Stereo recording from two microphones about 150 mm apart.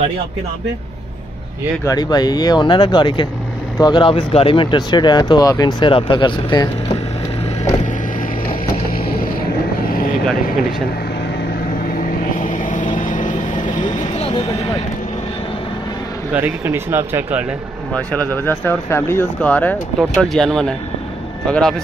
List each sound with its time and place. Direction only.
1.9 s speech: 25° left (ahead or behind)
8.8 s boat: 80° left
12.4 s vehicle: 55° left (ahead or behind)
14.1 s a sound: 40° left (ahead or behind)
16.3 s speech: 15° right (ahead or behind)
17.9 s speech: 10° left (ahead or behind)